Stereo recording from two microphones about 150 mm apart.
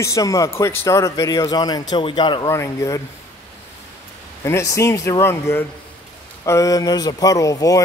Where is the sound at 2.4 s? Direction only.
20° left (ahead or behind).